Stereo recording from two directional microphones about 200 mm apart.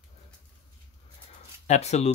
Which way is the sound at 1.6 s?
35° left (ahead or behind).